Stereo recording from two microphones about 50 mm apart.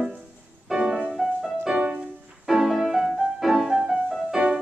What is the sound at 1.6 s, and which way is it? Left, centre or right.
Music, centre.